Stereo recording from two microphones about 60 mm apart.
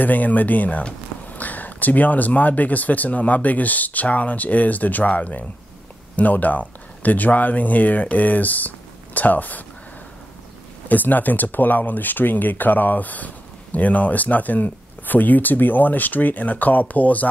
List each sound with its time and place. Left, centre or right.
0.0 s speech: left
10.9 s speech: left